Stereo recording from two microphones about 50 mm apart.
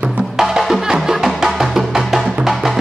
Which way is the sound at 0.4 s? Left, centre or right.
Centre.